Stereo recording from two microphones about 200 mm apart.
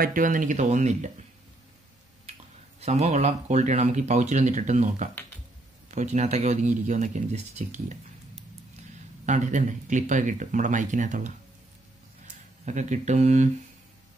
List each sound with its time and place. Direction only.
0.0 s speech: 45° right (ahead or behind)
2.8 s speech: 35° right (ahead or behind)
9.2 s speech: 35° right (ahead or behind)
12.6 s speech: 35° right (ahead or behind)